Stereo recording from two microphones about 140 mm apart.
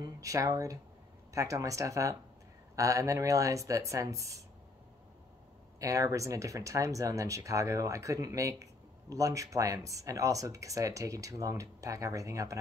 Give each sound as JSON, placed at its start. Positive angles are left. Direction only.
{"t": 0.0, "sound": "speech", "side_deg": -25}
{"t": 5.8, "sound": "speech", "side_deg": -20}